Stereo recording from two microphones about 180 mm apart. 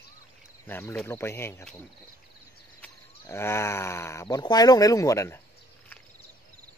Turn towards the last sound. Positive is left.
turn(degrees=15)  # may be behind; listen again after turning